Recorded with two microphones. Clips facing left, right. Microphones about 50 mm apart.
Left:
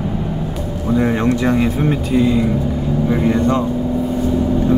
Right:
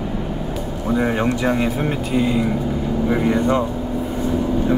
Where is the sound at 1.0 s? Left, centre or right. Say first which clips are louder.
Left 3 dB; centre.